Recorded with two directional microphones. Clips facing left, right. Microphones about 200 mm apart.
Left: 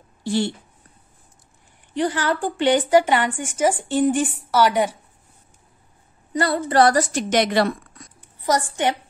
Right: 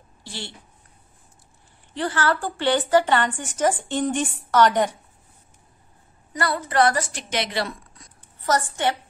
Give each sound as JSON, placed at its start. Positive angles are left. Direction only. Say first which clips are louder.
{"t": 0.2, "sound": "speech", "louder": "left 15 dB", "side_deg": 50}
{"t": 2.0, "sound": "a woman's voice", "louder": "left 2 dB", "side_deg": 15}
{"t": 6.3, "sound": "a woman's voice", "louder": "left 4 dB", "side_deg": 25}
{"t": 8.4, "sound": "a woman's voice", "louder": "left 2 dB", "side_deg": 15}